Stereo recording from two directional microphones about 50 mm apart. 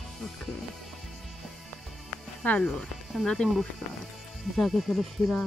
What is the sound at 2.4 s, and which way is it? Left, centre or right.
Speech, left.